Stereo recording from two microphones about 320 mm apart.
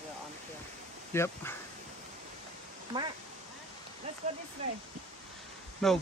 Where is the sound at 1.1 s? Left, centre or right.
Centre.